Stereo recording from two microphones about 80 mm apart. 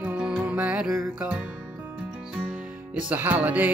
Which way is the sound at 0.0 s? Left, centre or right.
Centre.